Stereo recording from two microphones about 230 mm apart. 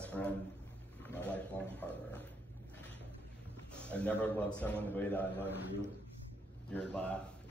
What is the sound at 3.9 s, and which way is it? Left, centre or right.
A man's voice, centre.